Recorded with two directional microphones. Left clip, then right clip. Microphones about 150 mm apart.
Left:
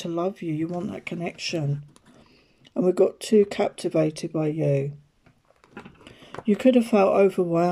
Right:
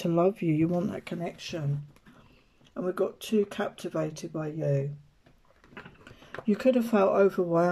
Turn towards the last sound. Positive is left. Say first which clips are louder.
# left 3 dB
turn(degrees=15)  # may be behind; listen again after turning